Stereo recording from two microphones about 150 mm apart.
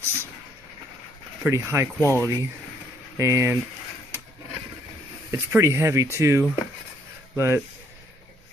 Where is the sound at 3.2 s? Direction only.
20° right (ahead or behind).